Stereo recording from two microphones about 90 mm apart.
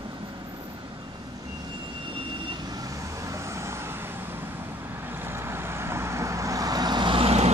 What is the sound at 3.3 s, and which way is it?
Vehicle, 30° right (ahead or behind).